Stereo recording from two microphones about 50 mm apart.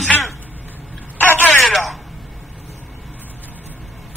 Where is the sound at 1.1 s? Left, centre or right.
Left.